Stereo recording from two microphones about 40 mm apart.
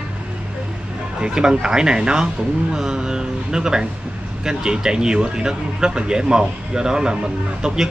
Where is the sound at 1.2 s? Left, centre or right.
Centre.